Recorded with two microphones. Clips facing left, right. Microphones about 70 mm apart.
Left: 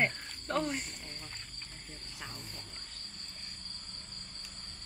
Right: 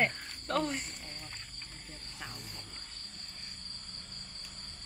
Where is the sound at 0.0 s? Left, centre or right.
Centre.